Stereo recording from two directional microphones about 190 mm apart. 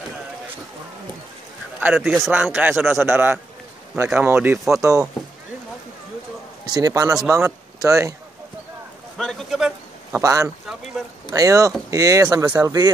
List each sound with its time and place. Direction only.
2.0 s a man's voice: centre (ahead or behind)
6.6 s a man's voice: 20° right (ahead or behind)
9.2 s speech: centre (ahead or behind)
10.2 s a man's voice: 15° right (ahead or behind)
11.0 s speech: centre (ahead or behind)
11.3 s a man's voice: 15° right (ahead or behind)